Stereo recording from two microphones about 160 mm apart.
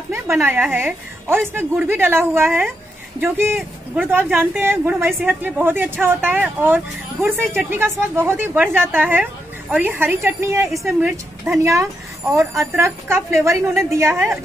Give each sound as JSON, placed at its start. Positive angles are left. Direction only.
{"t": 0.1, "sound": "a woman's voice", "side_deg": -15}
{"t": 10.7, "sound": "a woman's voice", "side_deg": -5}